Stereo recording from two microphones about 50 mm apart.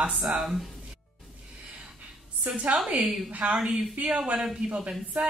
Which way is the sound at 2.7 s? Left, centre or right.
Right.